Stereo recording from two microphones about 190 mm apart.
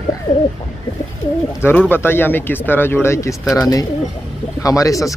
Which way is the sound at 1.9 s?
10° left (ahead or behind).